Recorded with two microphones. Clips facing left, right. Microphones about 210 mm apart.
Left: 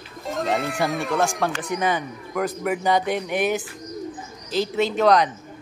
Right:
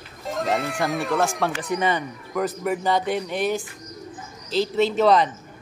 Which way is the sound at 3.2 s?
15° left (ahead or behind).